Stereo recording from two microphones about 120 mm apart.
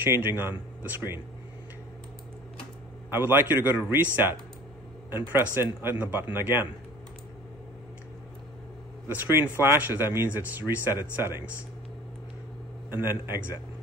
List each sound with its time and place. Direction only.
0.0 s a man's voice: 20° right (ahead or behind)
3.1 s a man's voice: 20° right (ahead or behind)
9.0 s a man's voice: 15° right (ahead or behind)
12.9 s speech: 20° right (ahead or behind)